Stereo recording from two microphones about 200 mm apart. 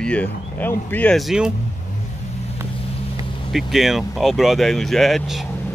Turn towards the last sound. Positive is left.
turn(degrees=0)  # may be behind; listen again after turning